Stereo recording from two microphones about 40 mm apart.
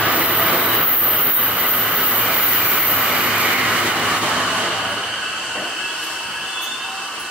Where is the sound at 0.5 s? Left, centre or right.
Right.